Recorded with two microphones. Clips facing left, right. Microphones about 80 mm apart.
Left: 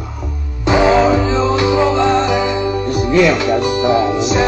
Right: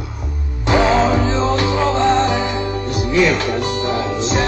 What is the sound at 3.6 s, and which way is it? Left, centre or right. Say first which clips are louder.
Music: left 6 dB; centre.